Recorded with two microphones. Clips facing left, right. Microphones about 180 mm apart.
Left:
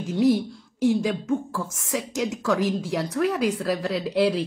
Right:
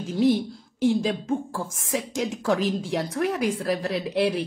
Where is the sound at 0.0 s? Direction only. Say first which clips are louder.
Left 1 dB; 30° right (ahead or behind).